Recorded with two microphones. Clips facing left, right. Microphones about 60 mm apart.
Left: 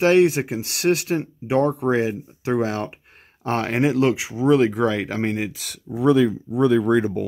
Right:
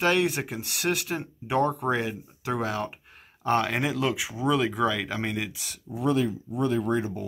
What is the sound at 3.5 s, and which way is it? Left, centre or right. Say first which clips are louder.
Speech: left 4 dB; left.